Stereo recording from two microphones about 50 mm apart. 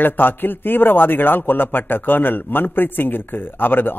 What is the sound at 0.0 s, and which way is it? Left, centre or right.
A man's voice, left.